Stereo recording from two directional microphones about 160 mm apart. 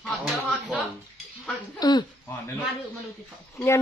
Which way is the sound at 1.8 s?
25° left (ahead or behind).